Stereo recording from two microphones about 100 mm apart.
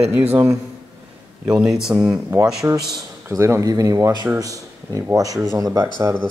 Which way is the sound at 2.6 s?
35° right (ahead or behind).